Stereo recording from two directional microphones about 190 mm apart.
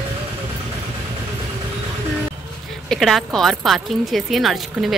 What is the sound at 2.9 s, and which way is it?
Speech, centre (ahead or behind).